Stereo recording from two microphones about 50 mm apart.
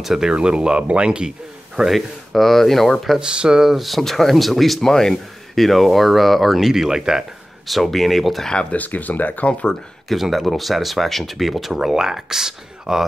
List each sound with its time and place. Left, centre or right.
0.0 s speech: centre
1.8 s speech: centre
3.2 s speech: centre
3.7 s speech: centre
7.6 s speech: centre
8.5 s speech: centre
8.7 s speech: left
10.0 s speech: centre